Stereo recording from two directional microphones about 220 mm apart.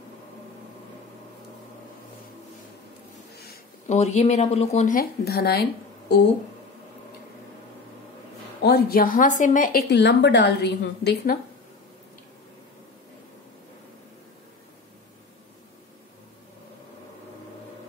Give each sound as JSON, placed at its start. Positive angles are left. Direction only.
{"t": 3.3, "sound": "a sound", "side_deg": 45}
{"t": 3.9, "sound": "speech", "side_deg": 30}
{"t": 8.6, "sound": "speech", "side_deg": 45}